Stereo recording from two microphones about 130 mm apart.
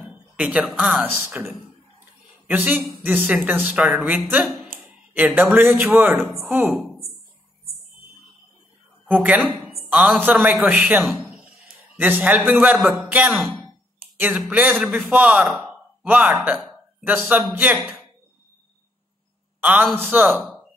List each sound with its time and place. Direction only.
0.0 s speech: 10° right (ahead or behind)
2.4 s speech: 15° right (ahead or behind)
6.1 s speech: centre (ahead or behind)
6.5 s speech: 15° right (ahead or behind)
9.1 s a man's voice: 10° right (ahead or behind)
12.0 s speech: 15° right (ahead or behind)
13.3 s speech: centre (ahead or behind)
14.5 s a man's voice: 15° right (ahead or behind)
19.6 s a man's voice: 15° right (ahead or behind)